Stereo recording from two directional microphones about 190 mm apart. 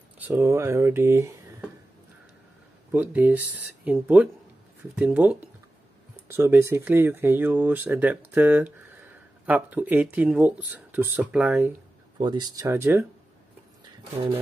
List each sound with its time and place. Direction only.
0.2 s speech: 10° right (ahead or behind)
2.9 s speech: 10° right (ahead or behind)
12.2 s speech: 20° right (ahead or behind)